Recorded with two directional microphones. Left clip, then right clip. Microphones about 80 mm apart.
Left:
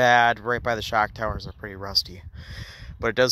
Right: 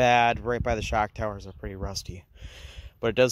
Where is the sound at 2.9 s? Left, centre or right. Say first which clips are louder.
Left 1 dB; right.